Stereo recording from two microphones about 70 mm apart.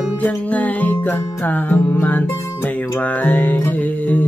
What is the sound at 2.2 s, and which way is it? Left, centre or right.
Music, left.